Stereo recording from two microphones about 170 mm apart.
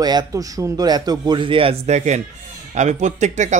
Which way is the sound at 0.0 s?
20° right (ahead or behind).